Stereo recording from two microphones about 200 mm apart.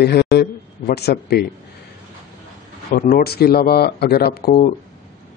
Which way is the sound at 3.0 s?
50° left (ahead or behind).